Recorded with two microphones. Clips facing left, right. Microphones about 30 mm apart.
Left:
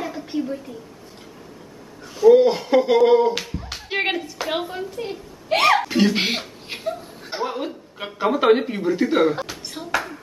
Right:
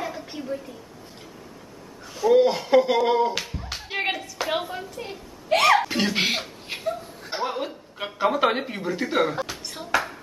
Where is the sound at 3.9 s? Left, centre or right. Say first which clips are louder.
Left 4 dB; centre.